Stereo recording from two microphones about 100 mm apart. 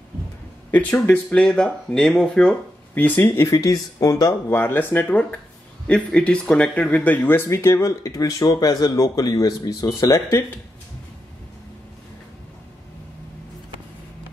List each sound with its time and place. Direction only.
0.7 s speech: 15° left (ahead or behind)
2.9 s speech: 20° left (ahead or behind)
3.5 s speech: 40° left (ahead or behind)
4.5 s speech: 20° left (ahead or behind)